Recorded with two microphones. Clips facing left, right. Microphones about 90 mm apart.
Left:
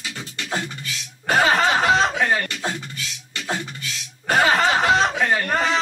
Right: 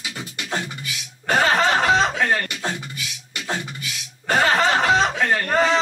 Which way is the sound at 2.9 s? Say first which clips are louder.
Even; 10° right (ahead or behind).